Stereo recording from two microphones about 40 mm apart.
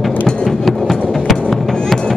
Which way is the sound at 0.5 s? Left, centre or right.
Centre.